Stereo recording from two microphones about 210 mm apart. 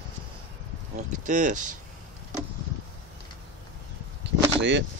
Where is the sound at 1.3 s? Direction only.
35° right (ahead or behind).